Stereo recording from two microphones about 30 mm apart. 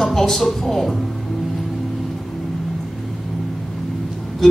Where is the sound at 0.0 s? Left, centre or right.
Centre.